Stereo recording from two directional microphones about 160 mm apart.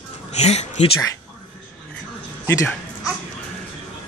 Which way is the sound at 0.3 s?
45° left (ahead or behind).